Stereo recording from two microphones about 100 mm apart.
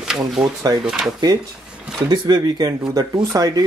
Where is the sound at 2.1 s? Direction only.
45° right (ahead or behind).